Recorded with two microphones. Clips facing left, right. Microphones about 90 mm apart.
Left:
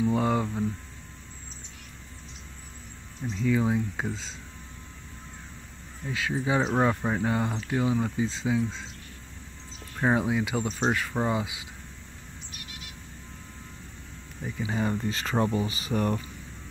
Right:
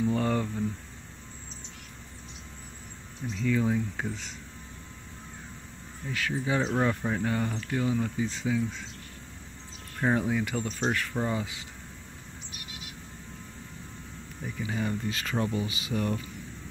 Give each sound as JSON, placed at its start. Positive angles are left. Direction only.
{"t": 0.1, "sound": "cricket", "side_deg": 15}
{"t": 3.4, "sound": "speech", "side_deg": 20}
{"t": 6.1, "sound": "speech", "side_deg": 20}
{"t": 9.9, "sound": "speech", "side_deg": 20}
{"t": 14.7, "sound": "speech", "side_deg": 30}